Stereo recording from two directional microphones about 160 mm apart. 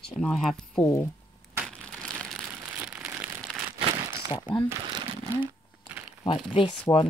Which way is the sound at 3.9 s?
20° right (ahead or behind).